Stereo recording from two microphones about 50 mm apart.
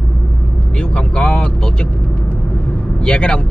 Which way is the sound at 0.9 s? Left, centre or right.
Left.